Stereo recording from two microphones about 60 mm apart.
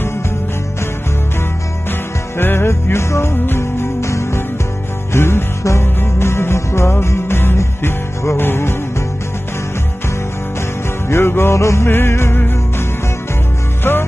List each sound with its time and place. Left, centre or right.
1.9 s music: left
11.1 s music: left
13.9 s music: left